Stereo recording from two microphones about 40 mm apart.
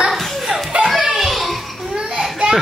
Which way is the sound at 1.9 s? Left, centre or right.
Right.